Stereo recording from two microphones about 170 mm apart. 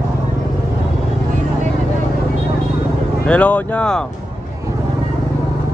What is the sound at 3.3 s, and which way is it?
Speech, 10° left (ahead or behind).